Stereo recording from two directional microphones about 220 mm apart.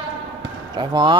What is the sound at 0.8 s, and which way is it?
Speech, 20° right (ahead or behind).